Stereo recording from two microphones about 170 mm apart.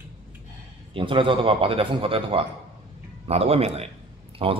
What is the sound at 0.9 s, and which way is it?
Speech, 30° right (ahead or behind).